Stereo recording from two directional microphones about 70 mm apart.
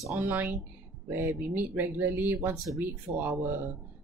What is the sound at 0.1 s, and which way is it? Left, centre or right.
Speech, right.